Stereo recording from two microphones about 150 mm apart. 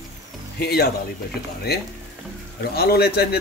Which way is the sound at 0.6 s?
90° left.